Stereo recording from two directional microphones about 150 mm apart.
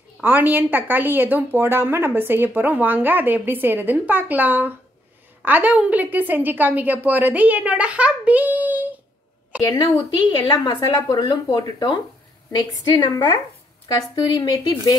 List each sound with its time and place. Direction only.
0.2 s a woman's voice: 10° right (ahead or behind)
9.5 s a sound: 10° right (ahead or behind)
9.9 s speech: 25° left (ahead or behind)